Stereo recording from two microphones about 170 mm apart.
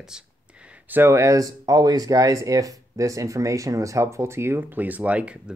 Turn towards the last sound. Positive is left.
turn(degrees=-5)  # may be behind; listen again after turning